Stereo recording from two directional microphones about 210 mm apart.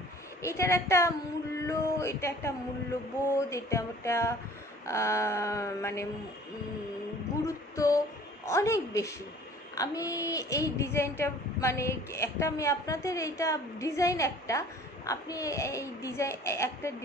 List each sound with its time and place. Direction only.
0.4 s a woman's voice: 15° left (ahead or behind)
7.4 s a sound: 15° left (ahead or behind)
8.5 s a woman's voice: 15° left (ahead or behind)